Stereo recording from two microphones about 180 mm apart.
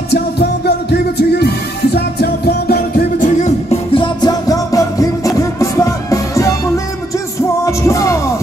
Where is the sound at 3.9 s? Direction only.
25° left (ahead or behind).